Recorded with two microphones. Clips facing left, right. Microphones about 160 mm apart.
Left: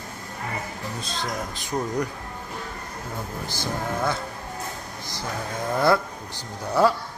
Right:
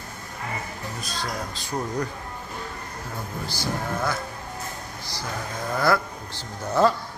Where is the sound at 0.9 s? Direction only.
25° left (ahead or behind).